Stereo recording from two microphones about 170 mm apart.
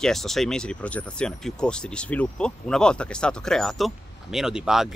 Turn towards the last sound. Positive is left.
turn(degrees=-5)  # may be behind; listen again after turning